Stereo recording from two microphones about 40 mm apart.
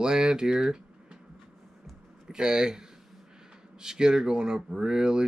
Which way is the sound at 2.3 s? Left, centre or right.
Centre.